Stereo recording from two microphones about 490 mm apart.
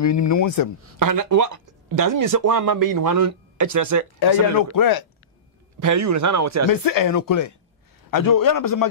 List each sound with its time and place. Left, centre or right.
0.0 s speech: left
0.9 s speech: right
4.2 s speech: left
5.8 s speech: right
6.7 s speech: left